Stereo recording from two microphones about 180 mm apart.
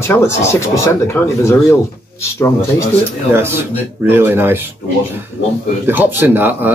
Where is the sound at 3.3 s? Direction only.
15° right (ahead or behind).